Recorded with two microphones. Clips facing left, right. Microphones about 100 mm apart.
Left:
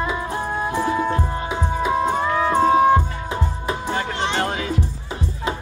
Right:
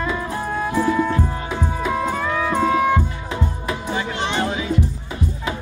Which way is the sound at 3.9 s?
55° left (ahead or behind).